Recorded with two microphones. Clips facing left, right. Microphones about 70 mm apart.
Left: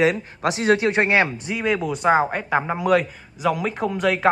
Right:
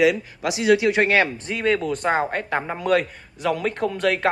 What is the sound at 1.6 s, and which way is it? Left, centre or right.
A man's voice, centre.